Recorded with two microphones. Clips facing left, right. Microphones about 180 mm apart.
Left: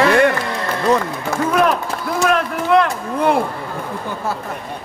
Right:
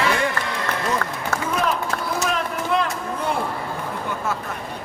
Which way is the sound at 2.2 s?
65° left (ahead or behind).